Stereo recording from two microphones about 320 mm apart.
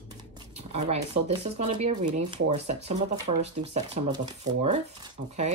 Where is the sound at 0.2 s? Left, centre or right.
Centre.